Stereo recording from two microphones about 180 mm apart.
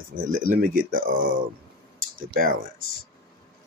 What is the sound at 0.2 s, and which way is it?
Speech, 50° right (ahead or behind).